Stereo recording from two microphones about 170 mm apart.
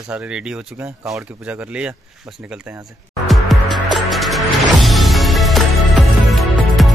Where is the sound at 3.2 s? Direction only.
Centre (ahead or behind).